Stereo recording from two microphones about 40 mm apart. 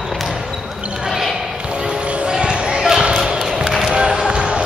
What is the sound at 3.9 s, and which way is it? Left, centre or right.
Music, right.